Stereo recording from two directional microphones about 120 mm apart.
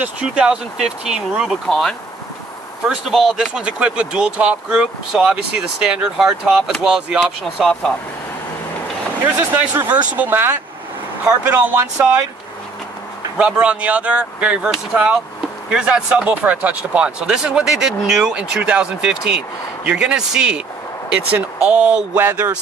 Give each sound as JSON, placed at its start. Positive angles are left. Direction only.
{"t": 0.0, "sound": "speech", "side_deg": -10}
{"t": 3.1, "sound": "speech", "side_deg": 0}
{"t": 9.5, "sound": "speech", "side_deg": -15}
{"t": 13.4, "sound": "speech", "side_deg": -10}